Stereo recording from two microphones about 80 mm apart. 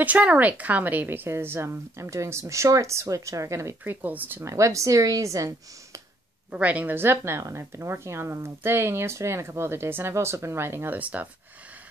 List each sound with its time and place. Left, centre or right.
0.0 s a woman's voice: centre; by 3.7 s right
3.8 s speech: right
4.5 s a woman's voice: right
6.5 s a woman's voice: centre
11.0 s speech: centre